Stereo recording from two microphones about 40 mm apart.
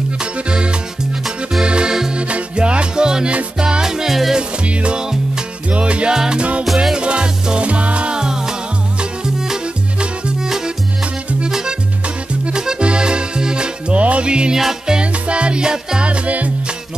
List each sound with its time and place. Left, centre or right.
0.2 s music: right; by 4.4 s centre
4.4 s music: right
6.1 s music: centre
6.6 s music: centre
7.0 s music: right
8.2 s music: centre
10.4 s music: centre
14.5 s music: centre
15.0 s music: right
16.1 s music: right